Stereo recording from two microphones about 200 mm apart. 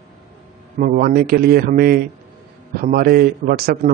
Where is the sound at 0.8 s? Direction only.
45° right (ahead or behind).